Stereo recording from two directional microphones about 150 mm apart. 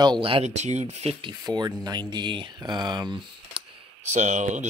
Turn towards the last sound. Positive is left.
turn(degrees=-55)  # may be behind; listen again after turning